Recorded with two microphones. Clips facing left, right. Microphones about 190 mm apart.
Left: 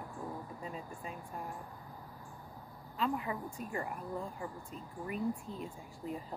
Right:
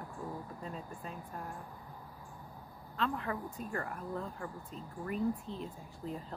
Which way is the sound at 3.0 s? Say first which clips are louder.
Even; 10° left (ahead or behind).